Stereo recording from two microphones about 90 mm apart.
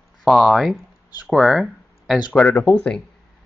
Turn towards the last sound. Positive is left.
turn(degrees=10)  # may be behind; listen again after turning